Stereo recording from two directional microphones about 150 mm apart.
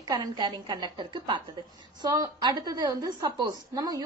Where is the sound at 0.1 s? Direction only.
30° right (ahead or behind).